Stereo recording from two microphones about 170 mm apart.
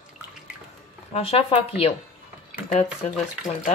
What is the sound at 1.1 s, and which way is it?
Speech, 35° left (ahead or behind).